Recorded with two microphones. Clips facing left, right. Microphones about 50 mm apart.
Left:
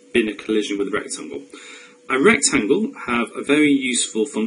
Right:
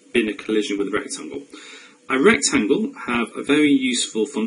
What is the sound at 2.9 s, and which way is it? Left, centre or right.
Speech, centre.